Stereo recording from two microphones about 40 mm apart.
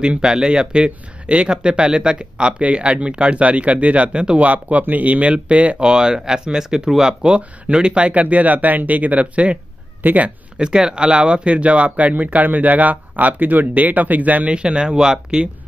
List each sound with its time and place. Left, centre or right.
0.2 s speech: centre
5.9 s speech: right
10.6 s speech: centre; by 14.5 s right
14.5 s speech: right